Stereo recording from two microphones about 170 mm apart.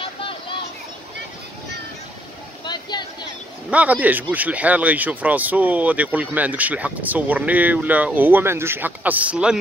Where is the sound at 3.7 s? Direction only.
10° right (ahead or behind).